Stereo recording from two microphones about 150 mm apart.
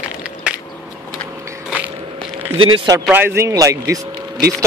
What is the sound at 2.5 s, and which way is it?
Speech, 35° right (ahead or behind).